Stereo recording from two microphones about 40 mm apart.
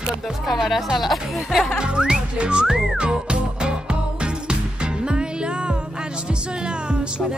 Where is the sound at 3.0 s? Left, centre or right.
Right.